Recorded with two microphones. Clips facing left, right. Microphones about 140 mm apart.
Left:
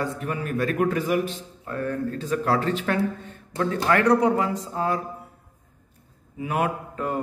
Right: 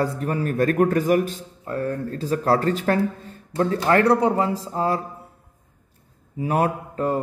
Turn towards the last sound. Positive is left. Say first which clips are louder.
# right 4 dB
turn(degrees=-35)  # may be behind; listen again after turning